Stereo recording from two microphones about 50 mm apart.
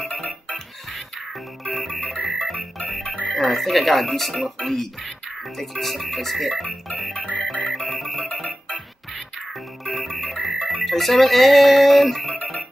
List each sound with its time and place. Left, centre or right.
0.1 s music: left
1.6 s music: centre
3.3 s speech: centre
7.6 s music: centre
9.8 s music: centre